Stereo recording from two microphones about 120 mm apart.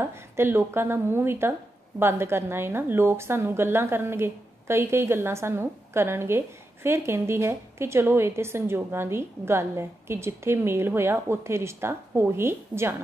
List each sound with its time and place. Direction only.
0.0 s a woman's voice: 20° right (ahead or behind)